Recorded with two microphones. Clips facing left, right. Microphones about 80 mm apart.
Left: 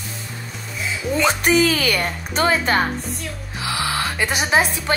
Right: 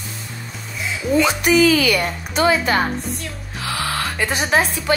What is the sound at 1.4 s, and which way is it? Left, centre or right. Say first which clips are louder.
Speech: right 3 dB; left.